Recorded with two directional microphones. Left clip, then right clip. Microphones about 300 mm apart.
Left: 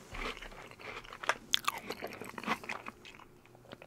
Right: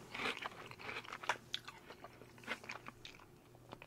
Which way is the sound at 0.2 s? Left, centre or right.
Centre.